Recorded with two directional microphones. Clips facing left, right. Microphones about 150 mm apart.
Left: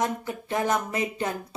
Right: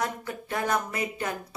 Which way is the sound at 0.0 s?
20° left (ahead or behind).